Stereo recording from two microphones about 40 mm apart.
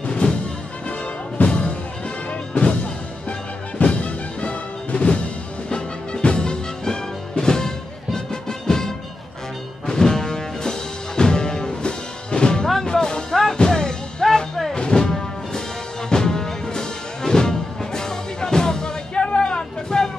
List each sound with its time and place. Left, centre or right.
0.0 s music: left
1.4 s music: left
3.3 s music: left
6.2 s music: left